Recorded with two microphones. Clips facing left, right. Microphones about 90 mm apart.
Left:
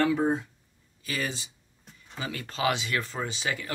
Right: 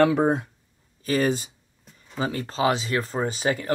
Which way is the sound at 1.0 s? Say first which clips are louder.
Right 10 dB; 40° right (ahead or behind).